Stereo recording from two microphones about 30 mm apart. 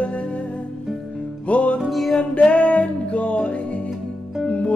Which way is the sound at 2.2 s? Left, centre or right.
Left.